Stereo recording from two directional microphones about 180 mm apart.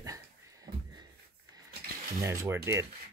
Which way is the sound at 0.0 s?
20° right (ahead or behind).